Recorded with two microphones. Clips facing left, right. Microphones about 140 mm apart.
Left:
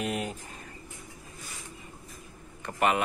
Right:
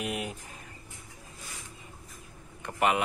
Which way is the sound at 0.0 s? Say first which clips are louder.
Left 2 dB; 10° right (ahead or behind).